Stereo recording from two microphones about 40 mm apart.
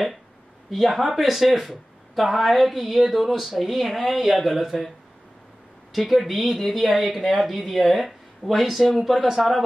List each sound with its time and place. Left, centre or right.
0.7 s speech: centre
5.9 s speech: centre